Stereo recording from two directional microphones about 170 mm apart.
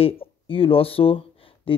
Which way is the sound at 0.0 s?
30° left (ahead or behind).